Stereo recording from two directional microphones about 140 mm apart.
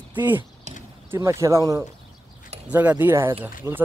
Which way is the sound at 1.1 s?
20° right (ahead or behind).